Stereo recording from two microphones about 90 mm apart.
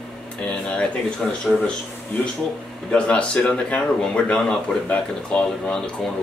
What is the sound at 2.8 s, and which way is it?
Speech, 15° left (ahead or behind).